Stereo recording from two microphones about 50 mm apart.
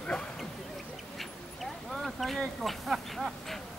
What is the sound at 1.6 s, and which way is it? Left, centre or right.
Speech, centre.